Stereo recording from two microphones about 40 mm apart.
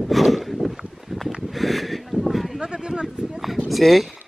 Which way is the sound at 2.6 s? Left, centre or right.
Centre.